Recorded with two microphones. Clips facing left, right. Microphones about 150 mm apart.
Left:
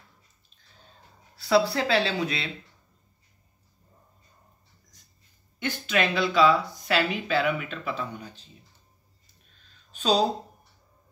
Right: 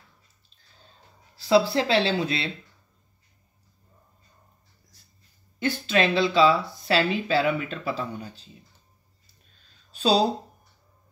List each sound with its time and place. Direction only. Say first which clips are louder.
1.3 s speech: right 2 dB; 25° right (ahead or behind)
5.6 s speech: right 3 dB; 30° right (ahead or behind)
9.8 s a sound: right 2 dB; 35° right (ahead or behind)